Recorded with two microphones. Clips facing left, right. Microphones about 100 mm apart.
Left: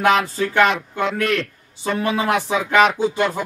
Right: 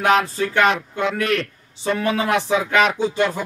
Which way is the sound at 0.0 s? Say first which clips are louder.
Even; centre (ahead or behind).